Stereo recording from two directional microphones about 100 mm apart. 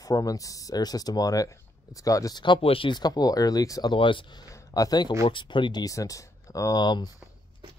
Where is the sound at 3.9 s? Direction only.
55° left (ahead or behind).